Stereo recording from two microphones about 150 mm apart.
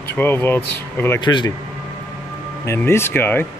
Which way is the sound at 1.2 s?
30° left (ahead or behind).